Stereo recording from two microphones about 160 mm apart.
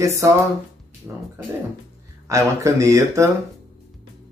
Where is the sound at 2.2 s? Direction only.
20° right (ahead or behind).